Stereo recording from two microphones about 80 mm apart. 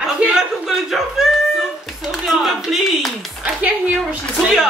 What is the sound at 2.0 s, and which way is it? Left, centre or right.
A woman's voice, centre.